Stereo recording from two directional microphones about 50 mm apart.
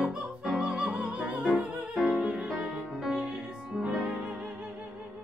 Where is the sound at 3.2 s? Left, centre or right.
Centre.